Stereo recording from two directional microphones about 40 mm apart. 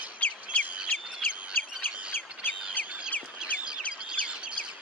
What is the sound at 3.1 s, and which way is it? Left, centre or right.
Bird, left.